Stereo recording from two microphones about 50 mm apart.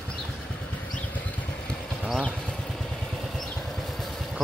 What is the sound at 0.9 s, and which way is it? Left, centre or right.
Vehicle, left.